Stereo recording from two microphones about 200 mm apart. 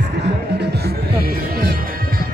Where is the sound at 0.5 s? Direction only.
55° right (ahead or behind).